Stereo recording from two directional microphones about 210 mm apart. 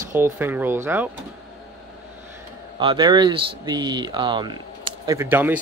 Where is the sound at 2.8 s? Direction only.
20° right (ahead or behind).